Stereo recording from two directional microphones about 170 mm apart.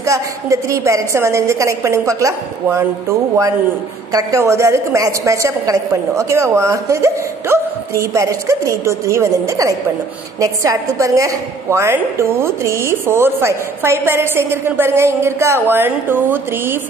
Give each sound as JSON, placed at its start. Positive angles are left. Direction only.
{"t": 0.0, "sound": "a woman's voice", "side_deg": -15}